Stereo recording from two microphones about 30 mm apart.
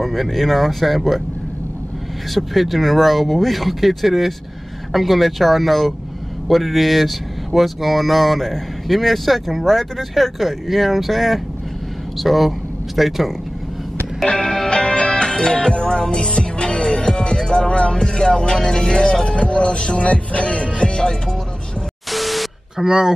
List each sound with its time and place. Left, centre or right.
0.0 s speech: centre
2.3 s speech: centre
14.2 s music: left
19.2 s music: left
22.1 s a sound: centre
22.8 s speech: right